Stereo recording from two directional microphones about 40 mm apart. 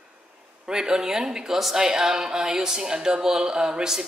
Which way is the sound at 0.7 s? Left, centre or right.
Centre.